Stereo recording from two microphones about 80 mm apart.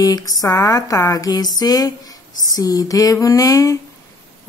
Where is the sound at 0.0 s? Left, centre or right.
Left.